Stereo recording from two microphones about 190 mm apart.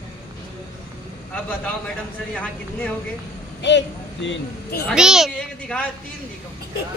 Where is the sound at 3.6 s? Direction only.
70° left (ahead or behind).